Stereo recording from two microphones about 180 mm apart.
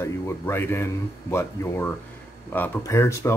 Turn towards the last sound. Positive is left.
turn(degrees=15)  # may be behind; listen again after turning